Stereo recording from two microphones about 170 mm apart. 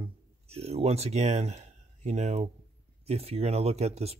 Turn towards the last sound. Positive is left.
turn(degrees=-40)  # may be behind; listen again after turning